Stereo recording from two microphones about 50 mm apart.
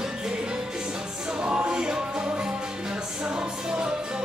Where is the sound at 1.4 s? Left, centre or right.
Centre.